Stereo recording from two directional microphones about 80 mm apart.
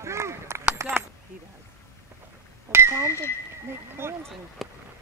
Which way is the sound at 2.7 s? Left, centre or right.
Right.